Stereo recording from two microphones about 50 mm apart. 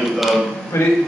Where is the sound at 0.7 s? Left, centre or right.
Left.